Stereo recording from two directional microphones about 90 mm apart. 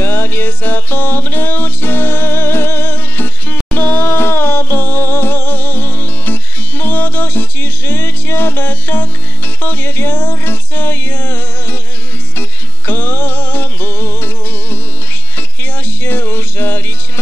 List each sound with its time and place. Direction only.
0.0 s music: 25° left (ahead or behind)
16.0 s music: 25° left (ahead or behind)